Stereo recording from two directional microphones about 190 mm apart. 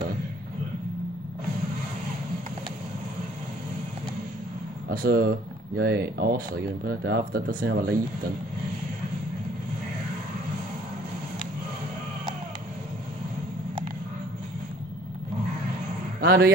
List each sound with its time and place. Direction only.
4.8 s speech: 50° right (ahead or behind)
16.2 s speech: 50° right (ahead or behind)